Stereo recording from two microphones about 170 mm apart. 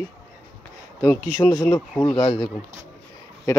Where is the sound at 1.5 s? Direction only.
20° left (ahead or behind).